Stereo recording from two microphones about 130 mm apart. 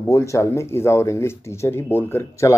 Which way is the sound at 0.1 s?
25° left (ahead or behind).